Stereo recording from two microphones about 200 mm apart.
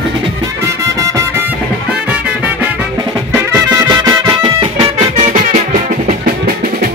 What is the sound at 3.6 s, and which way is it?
Music, 20° right (ahead or behind).